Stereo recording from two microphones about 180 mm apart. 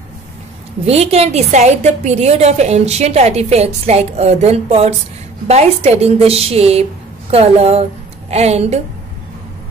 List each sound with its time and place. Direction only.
0.8 s a woman's voice: 35° right (ahead or behind)